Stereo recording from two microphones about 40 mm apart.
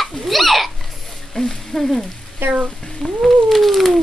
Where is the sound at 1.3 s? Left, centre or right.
Centre.